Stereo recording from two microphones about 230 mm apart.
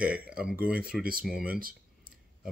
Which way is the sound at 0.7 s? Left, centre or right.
Centre.